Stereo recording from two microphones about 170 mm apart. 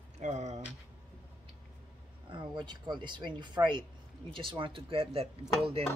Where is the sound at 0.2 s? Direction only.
40° right (ahead or behind).